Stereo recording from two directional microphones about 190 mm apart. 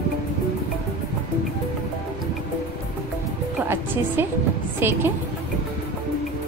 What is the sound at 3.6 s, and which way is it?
A woman's voice, 10° right (ahead or behind).